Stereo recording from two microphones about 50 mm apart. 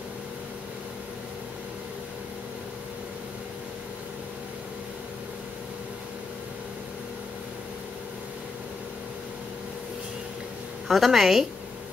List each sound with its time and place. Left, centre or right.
10.9 s a woman's voice: centre